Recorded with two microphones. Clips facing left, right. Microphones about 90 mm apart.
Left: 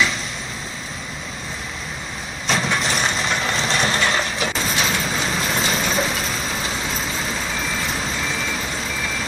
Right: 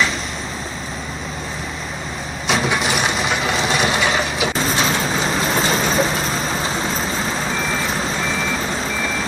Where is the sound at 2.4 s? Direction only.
5° right (ahead or behind).